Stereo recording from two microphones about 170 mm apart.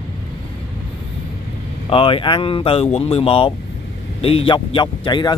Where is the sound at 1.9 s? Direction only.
30° left (ahead or behind).